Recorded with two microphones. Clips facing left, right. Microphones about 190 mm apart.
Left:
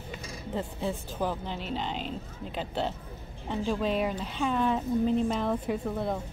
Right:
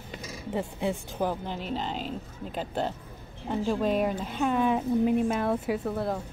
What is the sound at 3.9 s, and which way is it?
Speech, 45° right (ahead or behind).